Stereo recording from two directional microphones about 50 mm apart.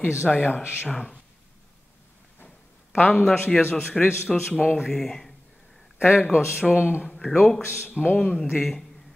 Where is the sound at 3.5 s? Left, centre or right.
Centre.